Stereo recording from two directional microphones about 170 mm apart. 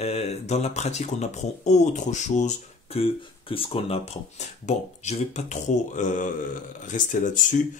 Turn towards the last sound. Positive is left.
turn(degrees=50)  # may be behind; listen again after turning